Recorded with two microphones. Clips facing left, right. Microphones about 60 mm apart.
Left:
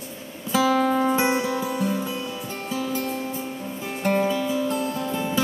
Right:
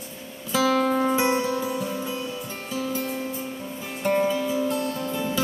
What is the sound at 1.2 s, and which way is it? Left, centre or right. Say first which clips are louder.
Music: even; left.